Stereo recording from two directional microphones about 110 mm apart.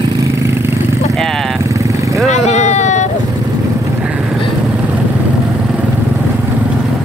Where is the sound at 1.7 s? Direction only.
30° right (ahead or behind).